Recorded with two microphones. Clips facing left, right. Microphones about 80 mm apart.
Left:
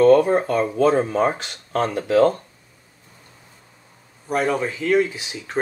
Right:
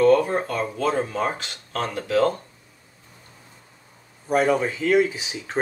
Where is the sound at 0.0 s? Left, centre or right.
Centre.